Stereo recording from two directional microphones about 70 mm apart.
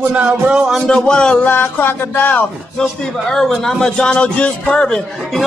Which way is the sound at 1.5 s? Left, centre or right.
Left.